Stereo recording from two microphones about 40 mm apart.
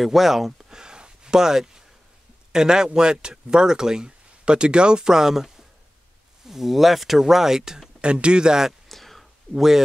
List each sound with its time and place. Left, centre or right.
0.0 s speech: centre
0.5 s a sound: centre
2.5 s speech: centre
8.0 s speech: right
8.8 s whispering: centre